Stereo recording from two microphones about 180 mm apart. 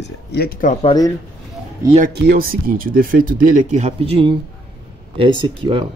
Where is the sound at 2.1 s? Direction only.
60° right (ahead or behind); by 4.4 s 30° right (ahead or behind).